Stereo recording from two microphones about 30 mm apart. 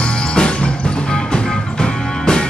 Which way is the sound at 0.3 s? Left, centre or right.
Left.